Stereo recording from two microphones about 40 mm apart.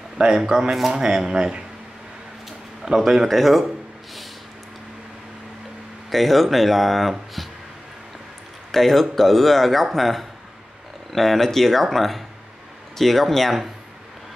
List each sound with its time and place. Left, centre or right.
0.2 s speech: centre
2.8 s speech: centre
3.3 s speech: centre
6.0 s speech: centre
8.7 s speech: centre